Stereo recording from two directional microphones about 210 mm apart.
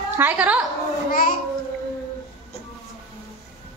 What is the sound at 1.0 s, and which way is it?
Speech, 40° left (ahead or behind).